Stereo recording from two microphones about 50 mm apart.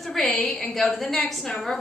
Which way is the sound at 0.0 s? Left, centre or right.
Centre.